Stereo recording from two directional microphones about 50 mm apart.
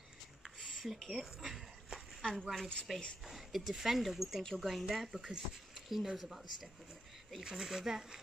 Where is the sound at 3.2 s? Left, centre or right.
Centre.